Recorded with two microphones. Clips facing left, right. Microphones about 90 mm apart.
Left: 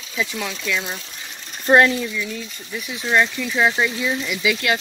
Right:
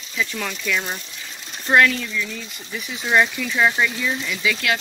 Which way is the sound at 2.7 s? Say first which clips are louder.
Even; centre (ahead or behind).